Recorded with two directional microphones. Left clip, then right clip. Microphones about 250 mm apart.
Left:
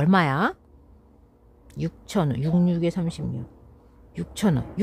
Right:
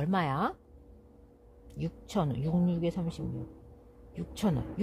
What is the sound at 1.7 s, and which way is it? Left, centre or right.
Speech, left.